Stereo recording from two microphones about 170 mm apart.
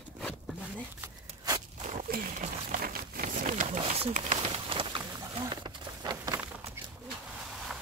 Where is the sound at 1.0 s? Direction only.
20° right (ahead or behind).